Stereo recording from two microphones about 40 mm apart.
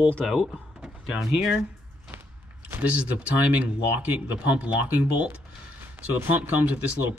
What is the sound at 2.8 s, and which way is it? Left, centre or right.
Speech, right.